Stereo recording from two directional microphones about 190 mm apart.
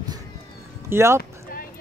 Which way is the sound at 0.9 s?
15° right (ahead or behind).